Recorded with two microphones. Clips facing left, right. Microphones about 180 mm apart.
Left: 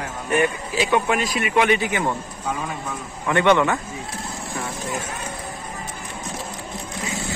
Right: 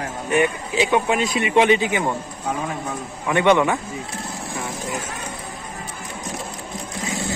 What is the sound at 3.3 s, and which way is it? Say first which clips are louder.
Speech: right 1 dB; 15° right (ahead or behind).